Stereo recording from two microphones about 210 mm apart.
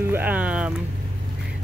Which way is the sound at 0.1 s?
10° right (ahead or behind).